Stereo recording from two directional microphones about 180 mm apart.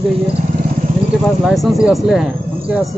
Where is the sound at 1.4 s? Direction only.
Centre (ahead or behind).